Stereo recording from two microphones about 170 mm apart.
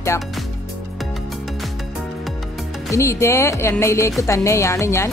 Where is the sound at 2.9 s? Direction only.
15° left (ahead or behind).